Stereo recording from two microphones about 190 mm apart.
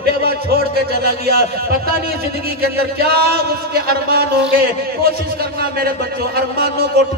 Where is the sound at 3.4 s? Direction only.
50° right (ahead or behind).